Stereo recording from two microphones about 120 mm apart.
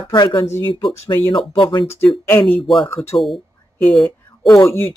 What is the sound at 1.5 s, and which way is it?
Speech, 40° left (ahead or behind).